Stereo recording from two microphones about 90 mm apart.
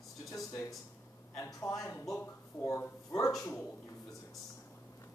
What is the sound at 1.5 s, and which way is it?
Speech, 40° left (ahead or behind).